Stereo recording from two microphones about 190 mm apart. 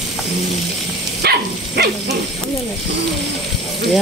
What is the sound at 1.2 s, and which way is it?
Dog, 55° right (ahead or behind).